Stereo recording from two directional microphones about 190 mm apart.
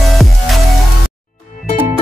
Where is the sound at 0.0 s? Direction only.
Centre (ahead or behind).